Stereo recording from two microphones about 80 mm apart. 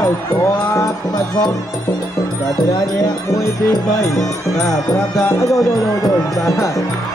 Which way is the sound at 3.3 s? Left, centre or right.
Left.